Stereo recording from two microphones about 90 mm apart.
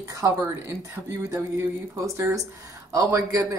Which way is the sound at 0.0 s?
40° right (ahead or behind).